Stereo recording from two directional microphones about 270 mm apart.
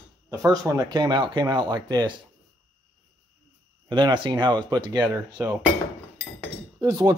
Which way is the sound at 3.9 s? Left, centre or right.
Centre.